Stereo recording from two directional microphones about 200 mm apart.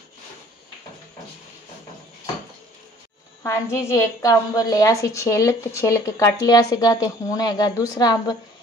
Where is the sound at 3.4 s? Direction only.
15° left (ahead or behind).